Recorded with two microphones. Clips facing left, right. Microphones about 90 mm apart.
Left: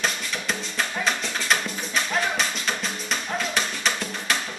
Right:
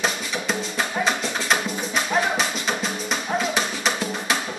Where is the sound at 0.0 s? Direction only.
5° right (ahead or behind).